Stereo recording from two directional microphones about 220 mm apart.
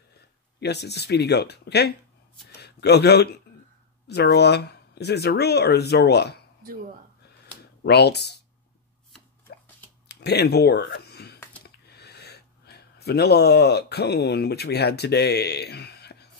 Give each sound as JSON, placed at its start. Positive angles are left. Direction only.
{"t": 0.6, "sound": "speech", "side_deg": 50}
{"t": 7.8, "sound": "speech", "side_deg": 50}
{"t": 9.5, "sound": "a sound", "side_deg": 50}
{"t": 11.6, "sound": "speech", "side_deg": 50}